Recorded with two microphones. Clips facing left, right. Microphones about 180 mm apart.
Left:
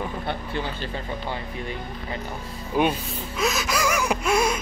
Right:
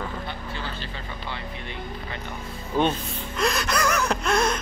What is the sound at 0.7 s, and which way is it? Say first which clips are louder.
Speech: left 5 dB; 45° left (ahead or behind).